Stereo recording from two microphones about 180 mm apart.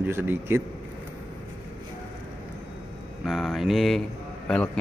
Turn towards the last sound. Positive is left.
turn(degrees=5)  # may be behind; listen again after turning